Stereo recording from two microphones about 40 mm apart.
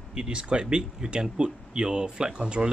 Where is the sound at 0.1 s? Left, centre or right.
Centre.